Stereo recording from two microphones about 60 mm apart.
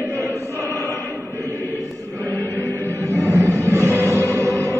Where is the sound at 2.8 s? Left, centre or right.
Right.